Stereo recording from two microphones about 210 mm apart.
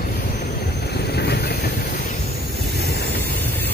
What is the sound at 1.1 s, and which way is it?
Vehicle, 50° left (ahead or behind).